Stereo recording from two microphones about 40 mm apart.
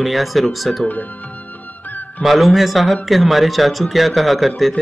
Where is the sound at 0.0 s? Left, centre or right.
Centre.